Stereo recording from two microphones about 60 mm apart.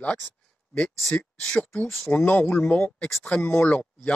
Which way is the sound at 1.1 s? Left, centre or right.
Centre.